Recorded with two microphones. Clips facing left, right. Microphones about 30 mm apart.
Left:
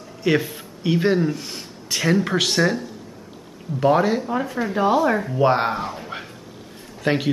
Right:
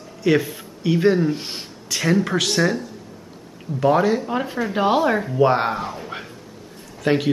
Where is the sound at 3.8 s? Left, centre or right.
Centre.